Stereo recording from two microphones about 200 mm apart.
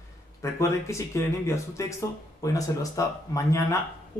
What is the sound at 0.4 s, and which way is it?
Speech, 15° left (ahead or behind).